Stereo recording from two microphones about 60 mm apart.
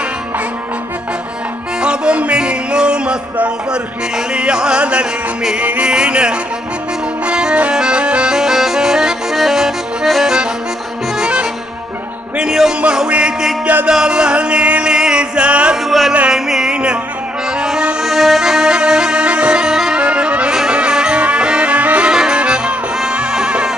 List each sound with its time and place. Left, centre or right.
1.8 s music: centre
3.3 s a man's voice: centre
4.3 s music: centre
15.8 s a sound: centre
16.1 s music: centre
16.3 s music: centre
17.5 s accordion: centre
20.0 s music: centre